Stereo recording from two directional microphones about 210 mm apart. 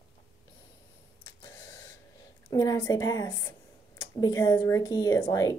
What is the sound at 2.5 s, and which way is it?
Speech, 15° left (ahead or behind).